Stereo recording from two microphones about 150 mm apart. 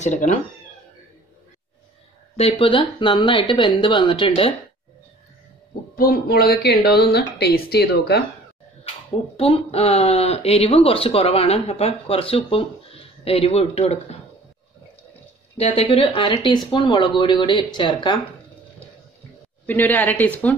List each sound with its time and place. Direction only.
0.0 s speech: 55° left (ahead or behind)
2.3 s speech: 40° left (ahead or behind)
5.9 s a woman's voice: 80° left
9.4 s speech: 40° left (ahead or behind)
15.5 s speech: 40° left (ahead or behind)
19.6 s a woman's voice: 10° left (ahead or behind)